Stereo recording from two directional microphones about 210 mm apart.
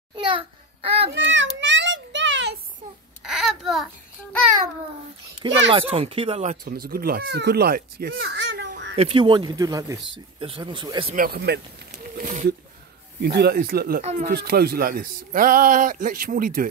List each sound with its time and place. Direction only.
0.1 s a sound: 25° right (ahead or behind)
1.1 s a sound: 60° right (ahead or behind)
3.2 s babbling: centre (ahead or behind)
5.7 s speech: 25° right (ahead or behind)
6.6 s speech: 45° right (ahead or behind)
8.9 s speech: 25° right (ahead or behind)
11.1 s speech: 45° right (ahead or behind)
12.2 s wild animals: 40° right (ahead or behind)
13.2 s a man's voice: 50° right (ahead or behind)